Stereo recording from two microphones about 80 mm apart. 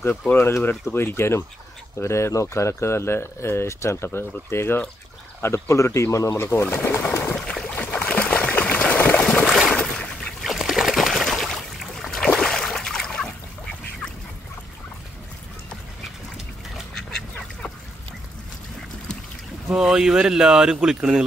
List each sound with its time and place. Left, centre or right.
0.1 s speech: centre
0.4 s speech: left
7.3 s boat: centre
7.8 s a sound: centre
10.4 s trickle: centre
12.4 s a sound: centre
16.7 s duck: centre
19.7 s speech: centre